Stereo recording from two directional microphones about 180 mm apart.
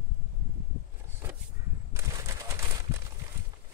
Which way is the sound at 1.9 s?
15° right (ahead or behind).